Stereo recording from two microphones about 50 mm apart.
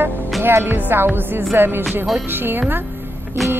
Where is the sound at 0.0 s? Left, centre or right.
Right.